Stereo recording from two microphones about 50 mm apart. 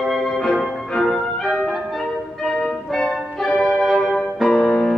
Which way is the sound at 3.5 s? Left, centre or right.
Left.